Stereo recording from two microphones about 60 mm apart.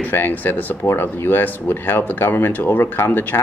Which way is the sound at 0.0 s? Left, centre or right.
Left.